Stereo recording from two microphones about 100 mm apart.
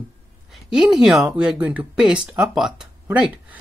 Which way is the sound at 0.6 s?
5° right (ahead or behind).